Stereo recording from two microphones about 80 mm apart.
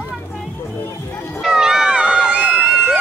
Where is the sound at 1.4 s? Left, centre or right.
Centre.